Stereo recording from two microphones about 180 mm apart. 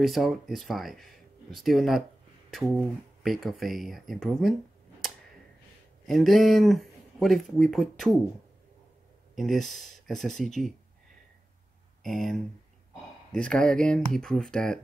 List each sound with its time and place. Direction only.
0.0 s speech: centre (ahead or behind)
6.0 s speech: centre (ahead or behind)
9.3 s speech: centre (ahead or behind)
12.0 s speech: centre (ahead or behind)